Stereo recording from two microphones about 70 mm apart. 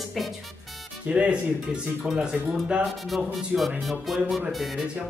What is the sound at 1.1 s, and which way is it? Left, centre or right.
A woman's voice, centre.